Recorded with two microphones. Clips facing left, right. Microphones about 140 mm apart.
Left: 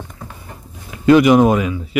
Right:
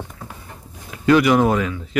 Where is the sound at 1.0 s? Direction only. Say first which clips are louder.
Left 5 dB; 20° left (ahead or behind).